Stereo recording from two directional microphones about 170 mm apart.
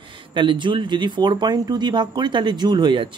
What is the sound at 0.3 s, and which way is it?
Speech, 30° right (ahead or behind).